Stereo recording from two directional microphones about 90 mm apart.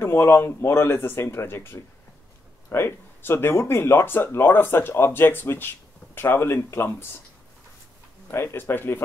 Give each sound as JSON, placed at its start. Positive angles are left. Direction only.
{"t": 0.0, "sound": "speech", "side_deg": 30}
{"t": 8.3, "sound": "speech", "side_deg": 30}